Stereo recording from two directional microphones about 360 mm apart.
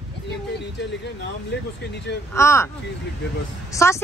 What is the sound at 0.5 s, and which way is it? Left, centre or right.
Speech, left.